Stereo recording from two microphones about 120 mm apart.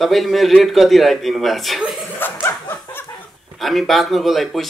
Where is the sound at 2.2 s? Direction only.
15° left (ahead or behind).